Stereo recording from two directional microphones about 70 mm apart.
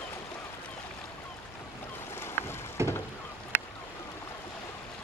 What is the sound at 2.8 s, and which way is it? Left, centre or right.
Rowboat, right.